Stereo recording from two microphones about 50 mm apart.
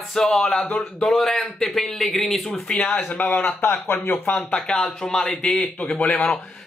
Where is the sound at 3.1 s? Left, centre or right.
Left.